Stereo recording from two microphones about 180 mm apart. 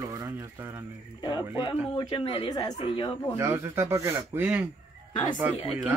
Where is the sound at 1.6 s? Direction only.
25° left (ahead or behind).